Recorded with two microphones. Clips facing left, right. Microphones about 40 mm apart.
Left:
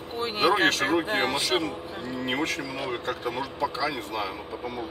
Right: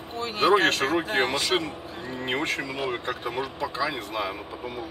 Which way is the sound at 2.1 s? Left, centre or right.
Right.